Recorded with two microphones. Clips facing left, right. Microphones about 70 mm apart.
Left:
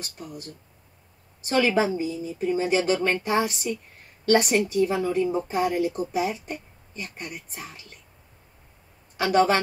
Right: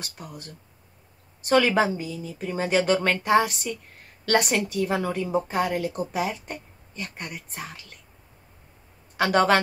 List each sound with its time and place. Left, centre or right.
0.0 s a woman's voice: right
9.1 s speech: right